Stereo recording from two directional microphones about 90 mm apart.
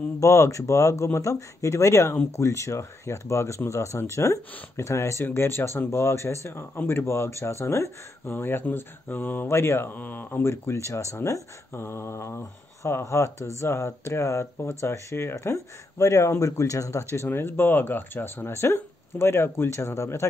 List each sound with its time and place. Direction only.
0.2 s speech: 35° left (ahead or behind)
17.1 s speech: 25° left (ahead or behind)